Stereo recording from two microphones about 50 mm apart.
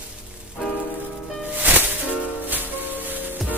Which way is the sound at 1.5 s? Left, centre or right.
Right.